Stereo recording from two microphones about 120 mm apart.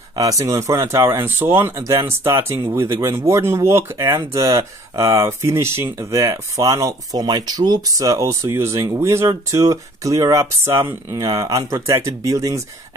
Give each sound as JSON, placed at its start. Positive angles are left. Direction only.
{"t": 0.1, "sound": "speech", "side_deg": -30}